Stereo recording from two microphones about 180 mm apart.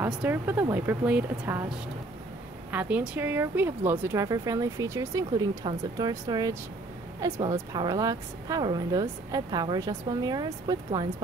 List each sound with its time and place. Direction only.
0.0 s speech: 10° right (ahead or behind)
2.7 s a woman's voice: 10° right (ahead or behind)